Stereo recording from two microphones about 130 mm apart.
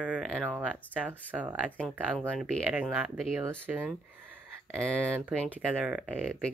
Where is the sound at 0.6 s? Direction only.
10° right (ahead or behind).